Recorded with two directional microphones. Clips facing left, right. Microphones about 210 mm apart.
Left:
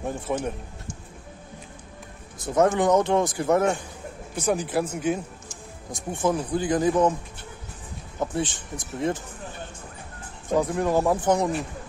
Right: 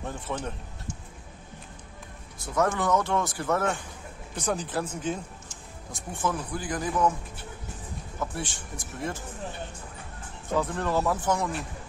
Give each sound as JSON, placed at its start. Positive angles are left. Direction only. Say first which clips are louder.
{"t": 0.0, "sound": "speech", "louder": "left 6 dB", "side_deg": 10}
{"t": 2.4, "sound": "speech", "louder": "left 6 dB", "side_deg": 20}
{"t": 8.2, "sound": "speech", "louder": "left 7 dB", "side_deg": 20}
{"t": 10.5, "sound": "speech", "louder": "left 5 dB", "side_deg": 15}